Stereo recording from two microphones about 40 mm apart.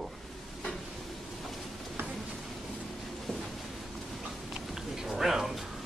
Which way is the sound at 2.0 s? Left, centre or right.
Right.